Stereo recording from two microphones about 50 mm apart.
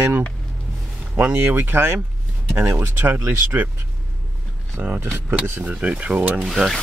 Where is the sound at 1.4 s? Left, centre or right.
Right.